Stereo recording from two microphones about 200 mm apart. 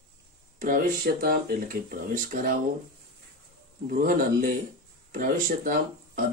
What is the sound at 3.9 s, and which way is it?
Speech, 45° right (ahead or behind).